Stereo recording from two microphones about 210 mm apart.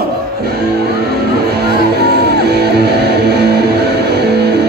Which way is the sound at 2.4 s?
50° right (ahead or behind).